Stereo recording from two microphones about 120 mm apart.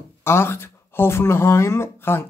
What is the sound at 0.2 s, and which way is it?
Speech, 20° left (ahead or behind).